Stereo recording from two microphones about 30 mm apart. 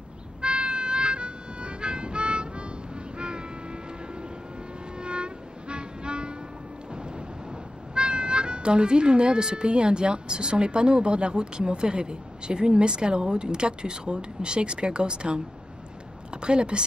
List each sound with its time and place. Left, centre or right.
0.4 s music: right
3.2 s vehicle: right
4.9 s music: right
7.9 s speech: right